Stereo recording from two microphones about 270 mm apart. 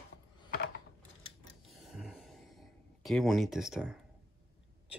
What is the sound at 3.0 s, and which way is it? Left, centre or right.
Speech, centre.